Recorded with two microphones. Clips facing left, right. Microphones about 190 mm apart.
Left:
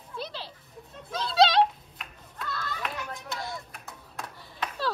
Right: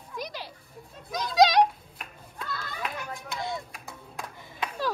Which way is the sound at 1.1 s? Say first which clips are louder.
Right 1 dB; 15° right (ahead or behind).